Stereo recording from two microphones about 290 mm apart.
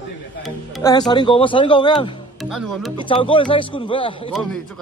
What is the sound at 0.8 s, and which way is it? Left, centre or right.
Speech, centre.